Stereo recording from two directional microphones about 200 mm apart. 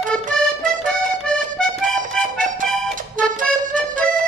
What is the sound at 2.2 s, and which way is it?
Accordion, 40° right (ahead or behind).